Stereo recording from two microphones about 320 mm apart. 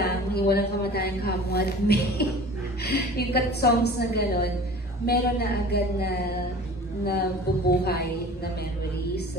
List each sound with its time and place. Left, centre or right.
0.0 s a woman's voice: left